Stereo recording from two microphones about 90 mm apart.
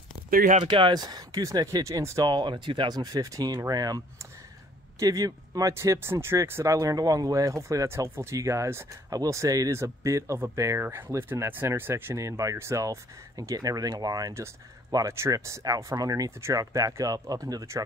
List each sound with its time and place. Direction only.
0.7 s speech: 70° right (ahead or behind)
0.9 s speech: 50° right (ahead or behind)
2.3 s speech: 60° right (ahead or behind)
3.0 s speech: 40° right (ahead or behind)
16.3 s speech: 30° right (ahead or behind)